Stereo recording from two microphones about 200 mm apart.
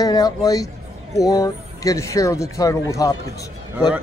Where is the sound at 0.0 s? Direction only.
20° left (ahead or behind).